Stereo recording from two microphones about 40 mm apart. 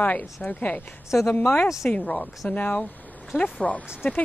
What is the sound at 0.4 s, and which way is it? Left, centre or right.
Speech, left.